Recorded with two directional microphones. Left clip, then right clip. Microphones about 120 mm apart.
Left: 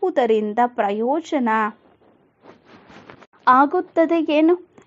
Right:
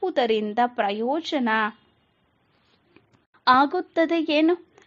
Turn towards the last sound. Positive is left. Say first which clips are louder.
# left 4 dB
turn(degrees=25)  # may be behind; listen again after turning